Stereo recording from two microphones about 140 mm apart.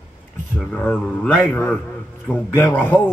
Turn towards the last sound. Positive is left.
turn(degrees=15)  # may be behind; listen again after turning